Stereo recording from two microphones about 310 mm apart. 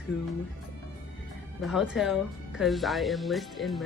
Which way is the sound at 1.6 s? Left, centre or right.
Centre.